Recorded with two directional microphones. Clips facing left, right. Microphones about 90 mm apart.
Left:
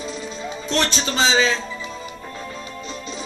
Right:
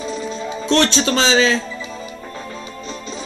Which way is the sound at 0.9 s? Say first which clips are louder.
Right 4 dB; 90° right.